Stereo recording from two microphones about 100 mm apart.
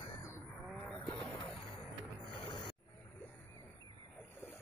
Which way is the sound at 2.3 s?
55° left (ahead or behind).